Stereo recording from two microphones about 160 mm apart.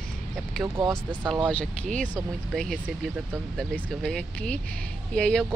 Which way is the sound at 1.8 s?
50° right (ahead or behind).